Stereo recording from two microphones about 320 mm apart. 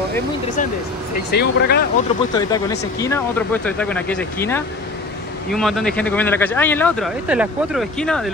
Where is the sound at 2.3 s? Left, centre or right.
Centre.